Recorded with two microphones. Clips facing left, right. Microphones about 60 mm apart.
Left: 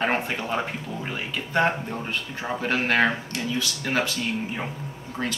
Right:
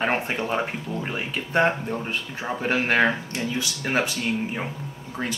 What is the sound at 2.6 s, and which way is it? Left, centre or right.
Speech, centre.